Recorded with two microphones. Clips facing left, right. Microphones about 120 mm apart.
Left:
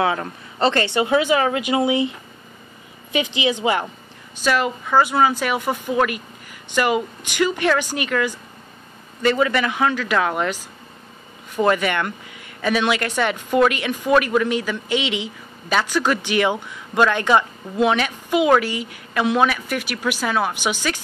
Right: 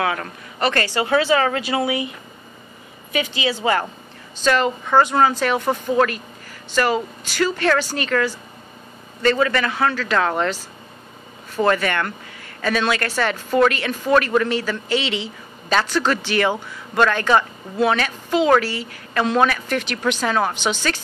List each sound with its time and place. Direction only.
0.0 s a woman's voice: 25° left (ahead or behind)